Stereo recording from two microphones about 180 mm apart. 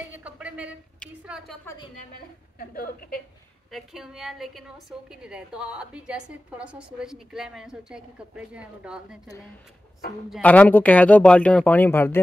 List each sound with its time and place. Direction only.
0.2 s a sound: 5° right (ahead or behind)
1.2 s a woman's voice: 5° right (ahead or behind)
2.7 s a woman's voice: 55° left (ahead or behind)
3.7 s a woman's voice: centre (ahead or behind)
10.3 s speech: 10° left (ahead or behind)